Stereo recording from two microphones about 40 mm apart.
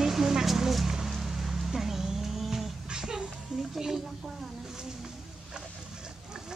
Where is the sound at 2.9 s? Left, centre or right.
Centre.